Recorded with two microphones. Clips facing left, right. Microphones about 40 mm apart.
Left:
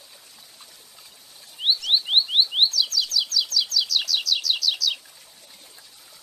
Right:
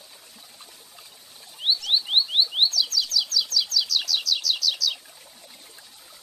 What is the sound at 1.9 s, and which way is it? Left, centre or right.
Rodents, centre.